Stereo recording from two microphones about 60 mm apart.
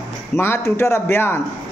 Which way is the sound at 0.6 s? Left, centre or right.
Left.